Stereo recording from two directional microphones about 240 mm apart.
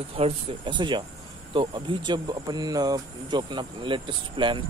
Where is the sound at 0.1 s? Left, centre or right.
Right.